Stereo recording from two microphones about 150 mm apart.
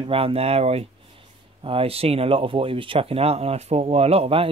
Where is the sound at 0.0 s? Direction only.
40° right (ahead or behind).